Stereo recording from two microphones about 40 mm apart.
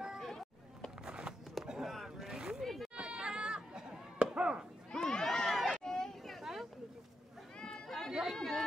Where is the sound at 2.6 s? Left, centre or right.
Centre.